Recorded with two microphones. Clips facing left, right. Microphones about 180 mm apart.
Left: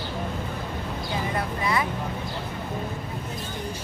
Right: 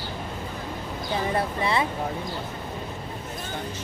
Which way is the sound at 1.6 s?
30° right (ahead or behind).